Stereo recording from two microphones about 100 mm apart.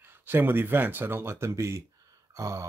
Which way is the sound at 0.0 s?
20° right (ahead or behind).